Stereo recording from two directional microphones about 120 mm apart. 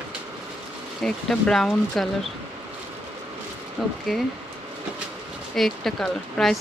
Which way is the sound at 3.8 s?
Centre (ahead or behind).